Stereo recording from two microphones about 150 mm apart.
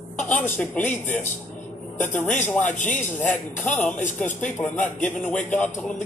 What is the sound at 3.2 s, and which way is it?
A man's voice, 10° left (ahead or behind).